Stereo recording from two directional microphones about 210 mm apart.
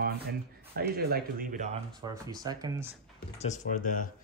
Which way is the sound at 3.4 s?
35° left (ahead or behind).